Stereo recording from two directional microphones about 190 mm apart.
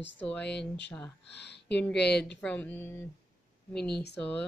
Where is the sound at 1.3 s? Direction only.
60° left (ahead or behind).